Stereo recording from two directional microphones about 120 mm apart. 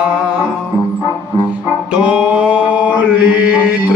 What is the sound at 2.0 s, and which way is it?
Music, 10° right (ahead or behind).